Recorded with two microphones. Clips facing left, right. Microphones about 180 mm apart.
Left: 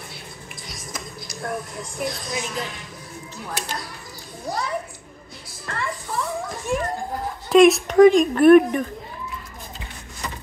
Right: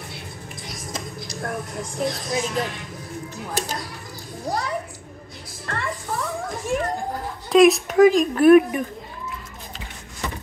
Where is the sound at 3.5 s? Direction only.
40° right (ahead or behind).